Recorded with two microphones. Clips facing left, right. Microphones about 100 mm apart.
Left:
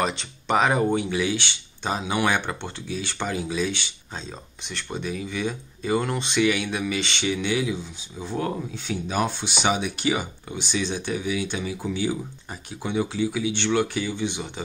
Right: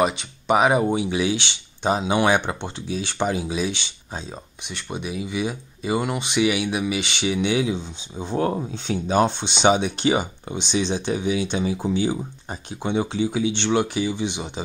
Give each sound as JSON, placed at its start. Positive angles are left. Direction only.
{"t": 0.0, "sound": "speech", "side_deg": -10}